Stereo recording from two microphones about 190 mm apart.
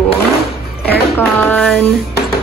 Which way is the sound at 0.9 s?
10° left (ahead or behind).